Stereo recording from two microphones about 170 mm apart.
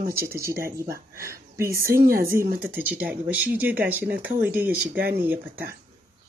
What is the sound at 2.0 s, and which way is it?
Speech, 60° right (ahead or behind).